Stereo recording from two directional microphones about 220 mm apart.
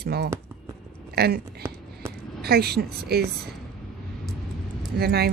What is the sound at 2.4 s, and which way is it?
Speech, 45° right (ahead or behind).